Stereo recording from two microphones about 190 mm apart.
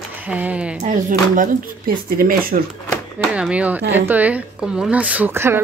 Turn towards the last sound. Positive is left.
turn(degrees=-10)  # may be behind; listen again after turning